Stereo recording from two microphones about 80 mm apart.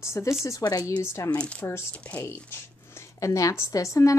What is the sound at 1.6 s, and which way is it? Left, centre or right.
Speech, left.